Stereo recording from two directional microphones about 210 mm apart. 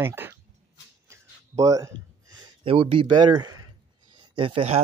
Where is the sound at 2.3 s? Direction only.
25° right (ahead or behind).